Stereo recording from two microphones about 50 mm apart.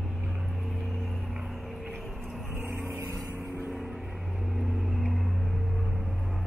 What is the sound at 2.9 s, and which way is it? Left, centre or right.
Vehicle, right.